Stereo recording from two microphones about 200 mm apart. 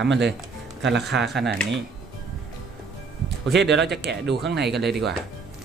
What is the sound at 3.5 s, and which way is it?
Speech, 60° right (ahead or behind).